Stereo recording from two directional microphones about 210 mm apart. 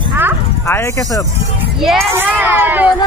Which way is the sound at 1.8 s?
Centre (ahead or behind).